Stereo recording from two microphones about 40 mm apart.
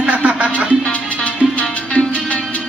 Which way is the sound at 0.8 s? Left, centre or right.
Left.